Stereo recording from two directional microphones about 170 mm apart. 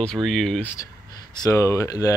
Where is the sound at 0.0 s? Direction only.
Centre (ahead or behind).